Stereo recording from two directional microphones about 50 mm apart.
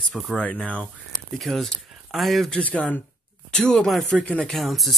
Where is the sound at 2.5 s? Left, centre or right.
Left.